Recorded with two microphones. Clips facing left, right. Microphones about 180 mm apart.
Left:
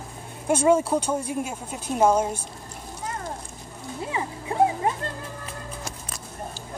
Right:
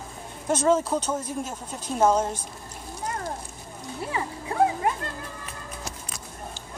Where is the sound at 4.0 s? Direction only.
20° left (ahead or behind).